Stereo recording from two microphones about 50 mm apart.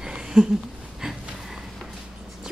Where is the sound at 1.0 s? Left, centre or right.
Centre.